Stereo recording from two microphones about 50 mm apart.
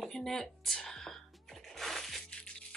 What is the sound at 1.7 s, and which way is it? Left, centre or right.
Music, centre.